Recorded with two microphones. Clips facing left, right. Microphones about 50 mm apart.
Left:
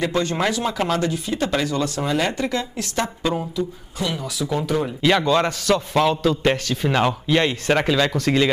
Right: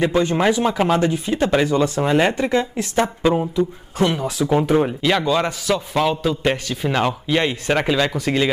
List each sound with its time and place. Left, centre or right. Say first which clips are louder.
0.1 s speech: right 4 dB; centre
4.0 s speech: right 6 dB; right
5.0 s a man's voice: left 1 dB; centre